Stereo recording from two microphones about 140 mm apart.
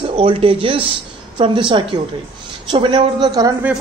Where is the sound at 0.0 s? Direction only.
40° right (ahead or behind).